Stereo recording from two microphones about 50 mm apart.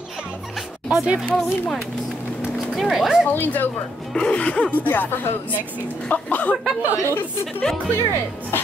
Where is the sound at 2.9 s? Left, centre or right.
Centre.